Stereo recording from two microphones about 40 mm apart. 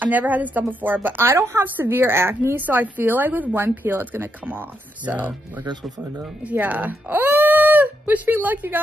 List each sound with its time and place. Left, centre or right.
0.0 s a woman's voice: right
2.6 s a woman's voice: right
5.0 s speech: right
6.5 s speech: right